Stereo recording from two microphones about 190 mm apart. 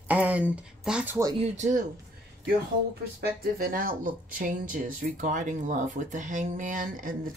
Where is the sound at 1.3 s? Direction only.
40° right (ahead or behind).